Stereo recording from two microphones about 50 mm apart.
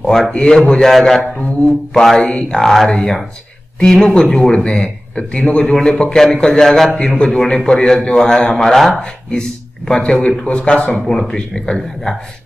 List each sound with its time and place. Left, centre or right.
0.0 s a man's voice: centre
8.5 s speech: centre
9.0 s a man's voice: centre